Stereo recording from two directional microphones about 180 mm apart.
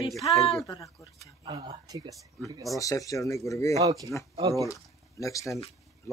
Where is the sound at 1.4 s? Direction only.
30° right (ahead or behind).